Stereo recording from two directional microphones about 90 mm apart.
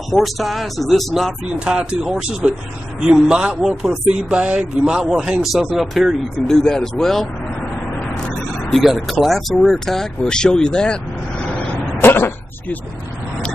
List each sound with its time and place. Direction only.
0.1 s speech: centre (ahead or behind)
8.6 s speech: centre (ahead or behind)
12.0 s a sound: 25° left (ahead or behind)